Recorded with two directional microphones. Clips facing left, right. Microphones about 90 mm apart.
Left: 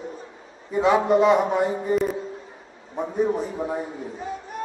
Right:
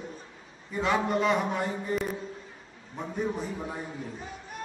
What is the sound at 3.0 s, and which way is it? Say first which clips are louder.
A man's voice: left 8 dB; 25° left (ahead or behind).